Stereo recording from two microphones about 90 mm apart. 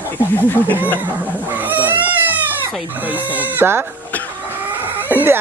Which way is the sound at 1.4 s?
20° right (ahead or behind).